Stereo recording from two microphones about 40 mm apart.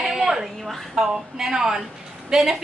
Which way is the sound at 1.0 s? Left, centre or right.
Centre.